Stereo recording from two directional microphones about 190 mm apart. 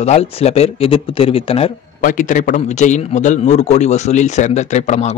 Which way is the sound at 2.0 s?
45° left (ahead or behind).